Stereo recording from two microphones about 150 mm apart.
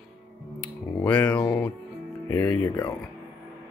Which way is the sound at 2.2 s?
20° left (ahead or behind).